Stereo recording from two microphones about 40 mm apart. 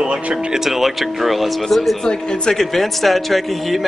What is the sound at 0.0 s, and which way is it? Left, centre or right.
Speech, right.